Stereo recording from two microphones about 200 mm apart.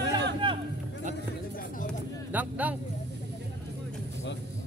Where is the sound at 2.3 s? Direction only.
10° right (ahead or behind).